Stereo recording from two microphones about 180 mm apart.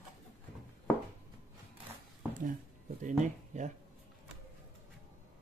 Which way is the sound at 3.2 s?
40° right (ahead or behind).